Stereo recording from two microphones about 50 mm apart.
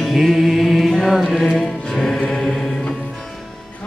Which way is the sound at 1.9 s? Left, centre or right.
Centre.